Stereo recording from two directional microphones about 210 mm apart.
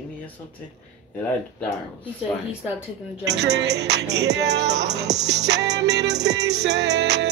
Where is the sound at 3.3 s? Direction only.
55° right (ahead or behind).